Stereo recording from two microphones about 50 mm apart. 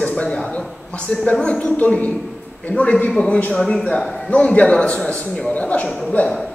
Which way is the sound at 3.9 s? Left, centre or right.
Centre.